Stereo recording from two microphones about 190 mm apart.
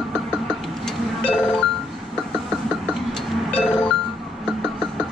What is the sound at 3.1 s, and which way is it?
Music, 5° left (ahead or behind).